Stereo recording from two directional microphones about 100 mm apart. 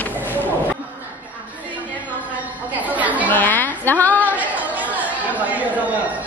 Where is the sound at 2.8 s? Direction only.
15° right (ahead or behind).